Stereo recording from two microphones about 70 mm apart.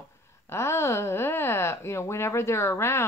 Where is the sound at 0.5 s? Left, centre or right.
Left.